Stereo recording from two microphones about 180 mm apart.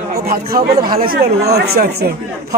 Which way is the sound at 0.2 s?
55° right (ahead or behind).